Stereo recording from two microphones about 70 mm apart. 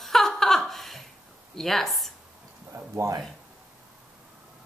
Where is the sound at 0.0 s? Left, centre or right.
Centre.